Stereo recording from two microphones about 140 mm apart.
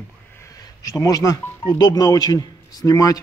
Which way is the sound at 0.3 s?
20° left (ahead or behind).